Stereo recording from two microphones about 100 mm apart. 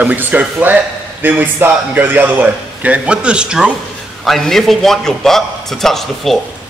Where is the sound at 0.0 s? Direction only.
15° right (ahead or behind).